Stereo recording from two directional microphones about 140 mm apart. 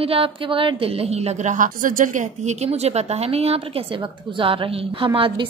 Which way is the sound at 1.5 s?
70° right (ahead or behind).